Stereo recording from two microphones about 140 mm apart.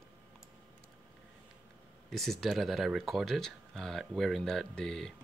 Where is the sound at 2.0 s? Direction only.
Centre (ahead or behind).